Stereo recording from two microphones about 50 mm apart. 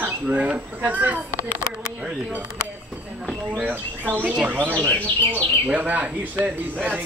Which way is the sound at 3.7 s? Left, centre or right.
Right.